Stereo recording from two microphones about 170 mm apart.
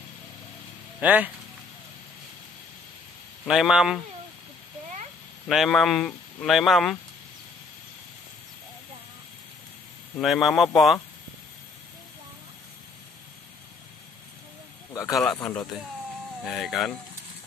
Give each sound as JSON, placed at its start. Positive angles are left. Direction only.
{"t": 1.0, "sound": "speech", "side_deg": -10}
{"t": 3.4, "sound": "speech", "side_deg": -5}
{"t": 5.5, "sound": "speech", "side_deg": 0}
{"t": 10.2, "sound": "speech", "side_deg": 0}
{"t": 14.9, "sound": "a sound", "side_deg": 20}
{"t": 15.1, "sound": "speech", "side_deg": 5}